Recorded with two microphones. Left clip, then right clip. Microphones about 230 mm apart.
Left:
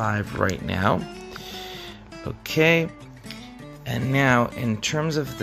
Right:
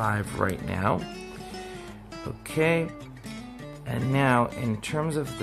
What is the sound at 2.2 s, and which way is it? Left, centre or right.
Speech, centre.